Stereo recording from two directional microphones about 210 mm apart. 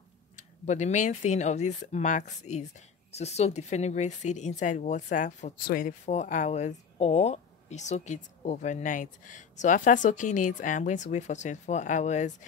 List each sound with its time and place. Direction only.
0.4 s speech: 35° left (ahead or behind)